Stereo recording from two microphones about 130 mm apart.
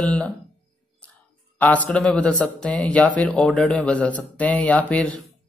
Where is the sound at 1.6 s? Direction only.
10° left (ahead or behind).